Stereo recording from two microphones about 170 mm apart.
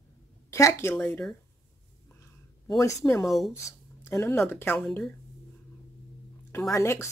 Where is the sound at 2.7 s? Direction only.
20° left (ahead or behind).